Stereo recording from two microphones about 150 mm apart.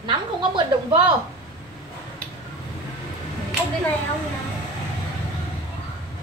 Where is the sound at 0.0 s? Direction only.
35° right (ahead or behind).